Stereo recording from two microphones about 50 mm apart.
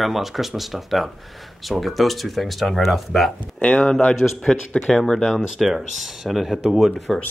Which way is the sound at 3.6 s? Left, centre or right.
Left.